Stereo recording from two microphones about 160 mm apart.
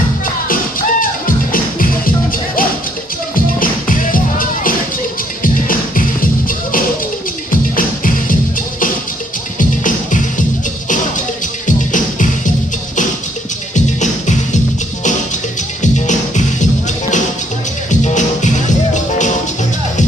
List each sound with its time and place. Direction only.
0.5 s music: 60° left (ahead or behind)
3.5 s music: 60° left (ahead or behind)
7.7 s music: 60° left (ahead or behind)
9.6 s music: 55° left (ahead or behind)
11.6 s music: 55° left (ahead or behind)
13.7 s music: 50° left (ahead or behind)
15.8 s music: 50° left (ahead or behind)
18.0 s music: 50° left (ahead or behind)